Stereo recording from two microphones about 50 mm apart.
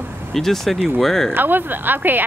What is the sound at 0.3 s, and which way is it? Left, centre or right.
Speech, centre.